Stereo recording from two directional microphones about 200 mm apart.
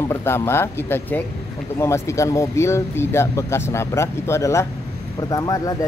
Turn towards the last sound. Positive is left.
turn(degrees=15)  # may be behind; listen again after turning